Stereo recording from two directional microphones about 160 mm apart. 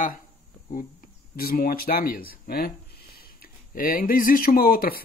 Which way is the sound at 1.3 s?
65° left (ahead or behind).